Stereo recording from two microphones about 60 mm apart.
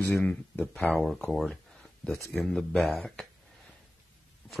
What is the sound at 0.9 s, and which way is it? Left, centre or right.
Speech, centre.